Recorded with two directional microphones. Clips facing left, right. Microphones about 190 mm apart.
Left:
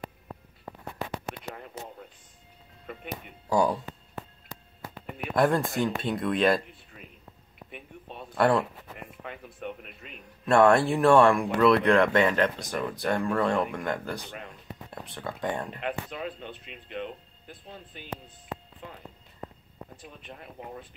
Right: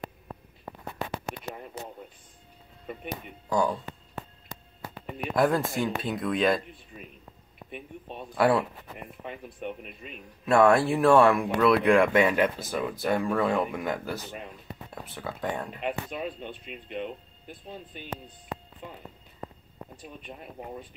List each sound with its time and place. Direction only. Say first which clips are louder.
1.5 s radio: right 1 dB; 10° right (ahead or behind)
3.4 s speech: left 2 dB; 10° left (ahead or behind)
5.3 s speech: even; centre (ahead or behind)
7.7 s speech: right 4 dB; 15° right (ahead or behind)
8.4 s speech: even; 5° right (ahead or behind)
10.4 s speech: even; 5° right (ahead or behind)
20.2 s speech: right 2 dB; 15° right (ahead or behind)